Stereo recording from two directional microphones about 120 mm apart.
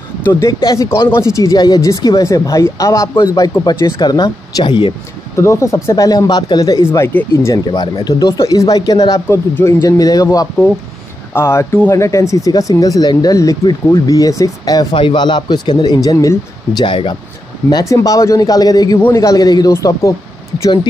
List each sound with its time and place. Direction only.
0.7 s speech: 25° left (ahead or behind)
5.4 s speech: 25° left (ahead or behind)
7.6 s speech: 35° left (ahead or behind)
16.8 s speech: 45° left (ahead or behind)
17.6 s speech: 30° left (ahead or behind)